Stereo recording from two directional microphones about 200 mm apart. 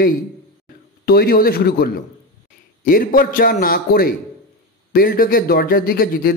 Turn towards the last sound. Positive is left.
turn(degrees=45)  # may be behind; listen again after turning